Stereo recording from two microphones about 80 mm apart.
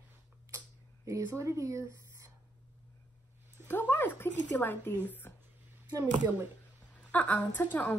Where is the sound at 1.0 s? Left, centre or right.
Right.